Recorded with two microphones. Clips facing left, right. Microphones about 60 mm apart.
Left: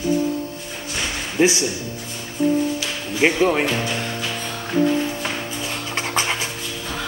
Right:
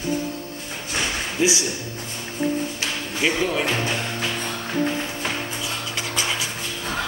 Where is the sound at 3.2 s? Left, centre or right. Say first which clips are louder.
Left 5 dB; left.